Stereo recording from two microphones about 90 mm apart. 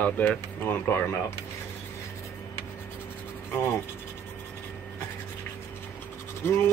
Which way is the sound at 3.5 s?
25° left (ahead or behind).